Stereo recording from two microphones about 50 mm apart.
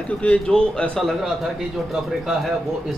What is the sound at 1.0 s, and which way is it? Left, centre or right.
Speech, centre.